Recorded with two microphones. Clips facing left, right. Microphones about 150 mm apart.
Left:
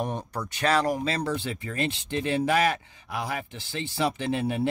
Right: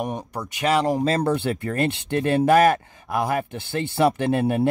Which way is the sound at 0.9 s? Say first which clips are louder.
Right 7 dB; 45° right (ahead or behind).